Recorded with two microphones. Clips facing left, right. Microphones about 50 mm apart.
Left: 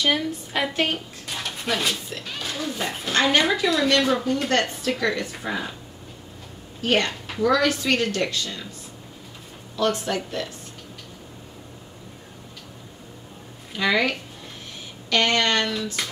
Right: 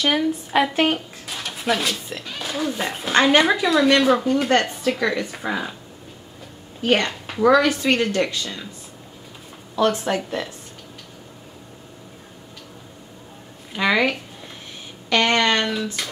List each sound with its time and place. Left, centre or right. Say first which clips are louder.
0.0 s speech: right 3 dB; centre
6.8 s a woman's voice: right 2 dB; centre
9.8 s speech: right 3 dB; centre
13.7 s speech: right 2 dB; centre